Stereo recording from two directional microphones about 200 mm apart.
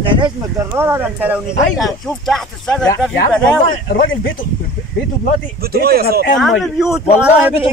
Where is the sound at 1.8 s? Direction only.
Centre (ahead or behind).